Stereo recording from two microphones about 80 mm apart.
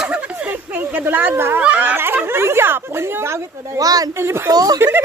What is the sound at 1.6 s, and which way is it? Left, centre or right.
Speech, right.